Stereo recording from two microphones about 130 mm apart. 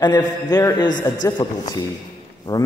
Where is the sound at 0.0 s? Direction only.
30° left (ahead or behind).